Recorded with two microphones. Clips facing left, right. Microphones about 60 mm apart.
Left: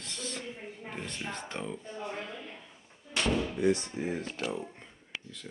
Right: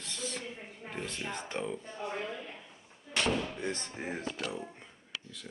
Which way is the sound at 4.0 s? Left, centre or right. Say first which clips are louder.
Left 5 dB; right.